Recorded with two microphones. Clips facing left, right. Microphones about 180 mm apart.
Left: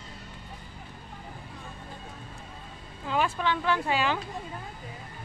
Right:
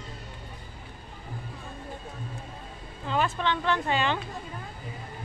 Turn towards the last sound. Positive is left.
turn(degrees=5)  # may be behind; listen again after turning